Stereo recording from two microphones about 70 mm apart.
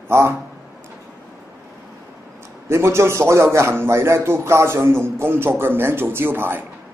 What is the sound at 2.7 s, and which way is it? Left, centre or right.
A man's voice, right.